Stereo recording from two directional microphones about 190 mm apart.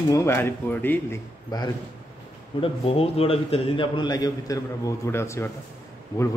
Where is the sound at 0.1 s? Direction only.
15° left (ahead or behind).